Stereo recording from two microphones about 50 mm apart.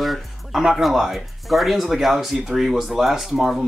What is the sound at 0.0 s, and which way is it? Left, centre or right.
Speech, centre.